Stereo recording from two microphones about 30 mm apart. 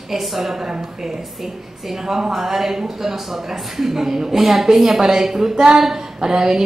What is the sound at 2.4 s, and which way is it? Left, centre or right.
A woman's voice, centre.